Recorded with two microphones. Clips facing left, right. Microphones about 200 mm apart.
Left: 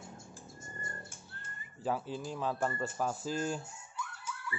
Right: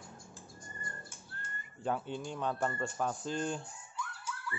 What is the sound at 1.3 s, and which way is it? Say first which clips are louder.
Speech: right 2 dB; centre (ahead or behind).